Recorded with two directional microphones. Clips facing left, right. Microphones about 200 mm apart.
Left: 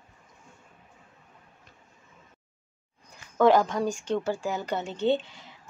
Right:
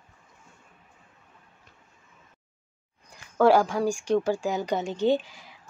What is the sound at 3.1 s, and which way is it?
Speech, 10° right (ahead or behind).